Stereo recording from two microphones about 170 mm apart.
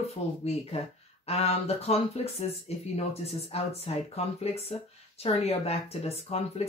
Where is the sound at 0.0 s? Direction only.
35° left (ahead or behind).